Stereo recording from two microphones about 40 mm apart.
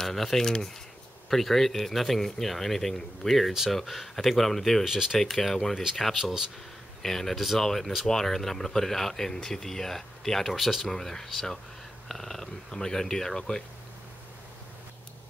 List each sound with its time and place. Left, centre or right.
0.0 s speech: centre
4.8 s speech: centre
5.2 s speech: centre
7.0 s speech: centre